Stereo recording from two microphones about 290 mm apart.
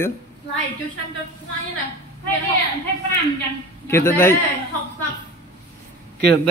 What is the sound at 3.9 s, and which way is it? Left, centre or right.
Speech, centre.